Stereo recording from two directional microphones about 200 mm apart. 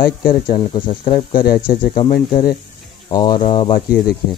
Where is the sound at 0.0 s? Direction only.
45° left (ahead or behind).